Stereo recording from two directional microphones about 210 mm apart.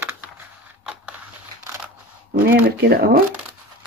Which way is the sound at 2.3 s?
45° right (ahead or behind).